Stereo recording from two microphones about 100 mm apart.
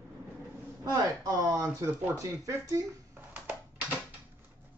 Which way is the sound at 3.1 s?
15° right (ahead or behind).